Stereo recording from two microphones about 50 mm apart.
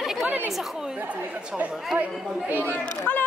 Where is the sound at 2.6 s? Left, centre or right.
Left.